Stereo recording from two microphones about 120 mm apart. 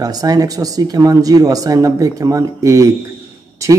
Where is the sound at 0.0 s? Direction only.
30° right (ahead or behind).